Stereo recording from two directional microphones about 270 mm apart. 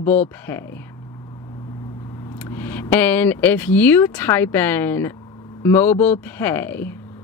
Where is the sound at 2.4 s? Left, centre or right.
Centre.